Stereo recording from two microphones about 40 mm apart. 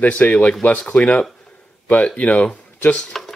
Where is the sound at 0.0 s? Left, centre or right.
Left.